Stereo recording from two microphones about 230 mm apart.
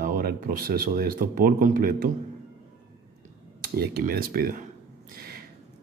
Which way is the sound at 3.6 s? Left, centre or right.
Right.